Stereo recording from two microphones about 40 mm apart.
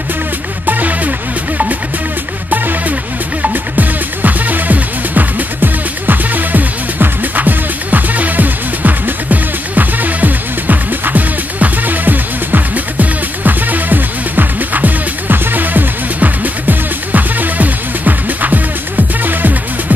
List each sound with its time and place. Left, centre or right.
0.7 s music: right
3.4 s music: right